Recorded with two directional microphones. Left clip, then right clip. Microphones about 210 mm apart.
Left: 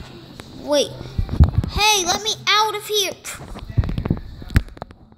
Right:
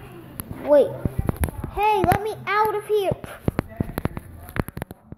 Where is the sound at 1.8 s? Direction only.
40° left (ahead or behind).